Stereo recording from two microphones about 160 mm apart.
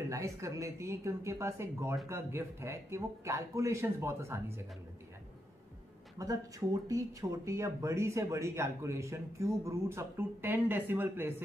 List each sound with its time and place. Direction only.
0.1 s speech: 20° right (ahead or behind)
6.1 s speech: 20° right (ahead or behind)